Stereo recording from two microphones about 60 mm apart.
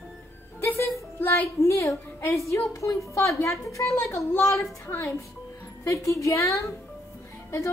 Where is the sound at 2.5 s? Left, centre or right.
Left.